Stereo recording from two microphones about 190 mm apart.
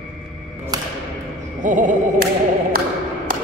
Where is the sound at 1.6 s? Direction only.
40° right (ahead or behind).